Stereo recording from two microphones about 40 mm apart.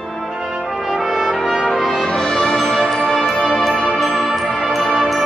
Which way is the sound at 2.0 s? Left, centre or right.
Centre.